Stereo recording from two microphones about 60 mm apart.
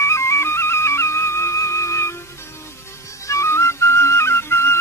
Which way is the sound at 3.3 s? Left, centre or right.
Left.